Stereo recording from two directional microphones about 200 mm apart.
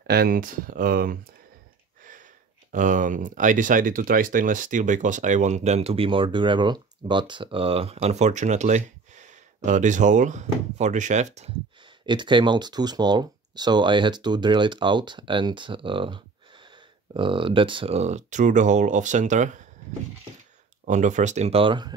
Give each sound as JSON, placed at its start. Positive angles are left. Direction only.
{"t": 0.0, "sound": "speech", "side_deg": -50}
{"t": 2.7, "sound": "speech", "side_deg": -40}
{"t": 20.8, "sound": "speech", "side_deg": -40}